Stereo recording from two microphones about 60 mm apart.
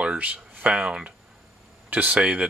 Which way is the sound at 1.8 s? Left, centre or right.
Right.